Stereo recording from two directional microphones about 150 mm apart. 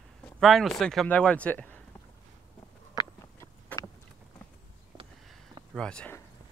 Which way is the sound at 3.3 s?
20° left (ahead or behind).